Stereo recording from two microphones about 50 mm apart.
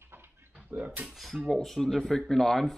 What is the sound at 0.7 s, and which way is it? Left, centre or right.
Speech, right.